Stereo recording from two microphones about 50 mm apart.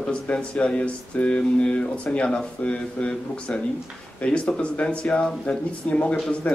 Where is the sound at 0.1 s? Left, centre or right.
Left.